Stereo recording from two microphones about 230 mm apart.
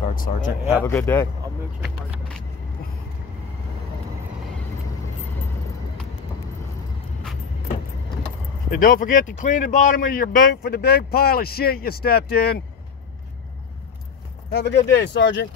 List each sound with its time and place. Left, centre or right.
0.0 s speech: left
0.8 s speech: centre
8.6 s speech: left
14.5 s speech: left